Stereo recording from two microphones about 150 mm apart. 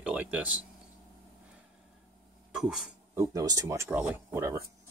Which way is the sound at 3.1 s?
20° right (ahead or behind).